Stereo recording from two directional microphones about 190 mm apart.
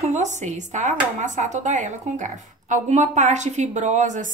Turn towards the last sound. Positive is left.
turn(degrees=-40)  # may be behind; listen again after turning